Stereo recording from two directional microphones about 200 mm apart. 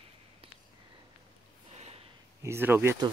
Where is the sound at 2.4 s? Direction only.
10° right (ahead or behind).